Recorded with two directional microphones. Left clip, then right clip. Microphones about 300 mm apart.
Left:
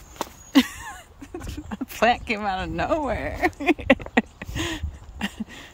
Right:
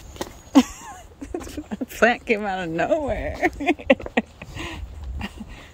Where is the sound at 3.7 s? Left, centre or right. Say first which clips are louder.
Right 1 dB; centre.